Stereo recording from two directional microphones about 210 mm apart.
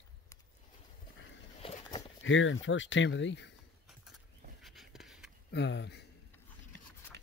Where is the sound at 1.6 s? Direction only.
25° left (ahead or behind).